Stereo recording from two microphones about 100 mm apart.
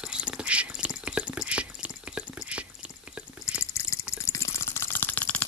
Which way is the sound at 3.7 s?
30° left (ahead or behind).